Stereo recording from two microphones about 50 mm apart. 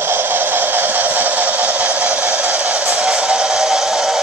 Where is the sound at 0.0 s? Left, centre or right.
Right.